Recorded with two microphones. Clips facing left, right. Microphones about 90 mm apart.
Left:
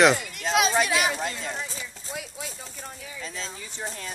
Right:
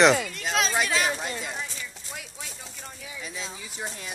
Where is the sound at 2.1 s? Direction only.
5° left (ahead or behind).